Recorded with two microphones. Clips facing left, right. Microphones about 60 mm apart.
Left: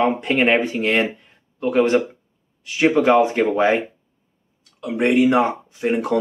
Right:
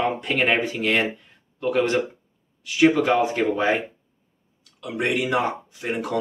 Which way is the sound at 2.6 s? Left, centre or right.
Left.